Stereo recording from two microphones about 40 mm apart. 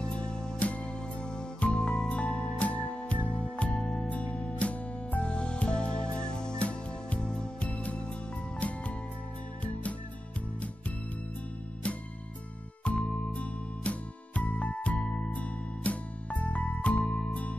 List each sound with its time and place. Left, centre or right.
0.1 s music: left
3.8 s music: centre
4.1 s music: left
7.6 s music: left
12.8 s music: left